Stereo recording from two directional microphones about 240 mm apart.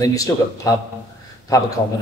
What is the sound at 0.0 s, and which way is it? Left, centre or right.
Speech, centre.